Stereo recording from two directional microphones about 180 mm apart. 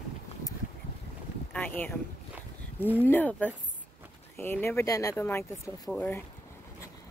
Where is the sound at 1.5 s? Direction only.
10° left (ahead or behind).